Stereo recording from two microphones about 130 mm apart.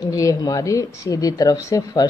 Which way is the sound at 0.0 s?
25° left (ahead or behind).